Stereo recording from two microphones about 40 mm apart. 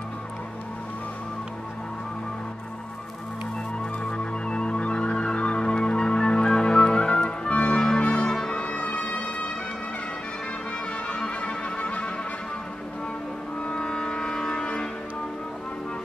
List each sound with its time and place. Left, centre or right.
4.0 s music: left
11.1 s music: left
13.7 s music: left